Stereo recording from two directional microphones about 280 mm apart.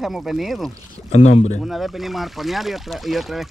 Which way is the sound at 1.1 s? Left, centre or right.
Left.